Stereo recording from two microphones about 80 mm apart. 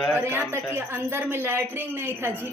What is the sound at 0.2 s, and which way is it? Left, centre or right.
A woman's voice, right.